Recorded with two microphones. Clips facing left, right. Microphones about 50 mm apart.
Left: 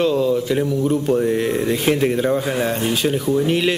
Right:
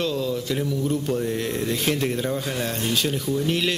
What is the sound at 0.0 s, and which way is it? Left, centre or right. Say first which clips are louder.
Speech: left 8 dB; centre.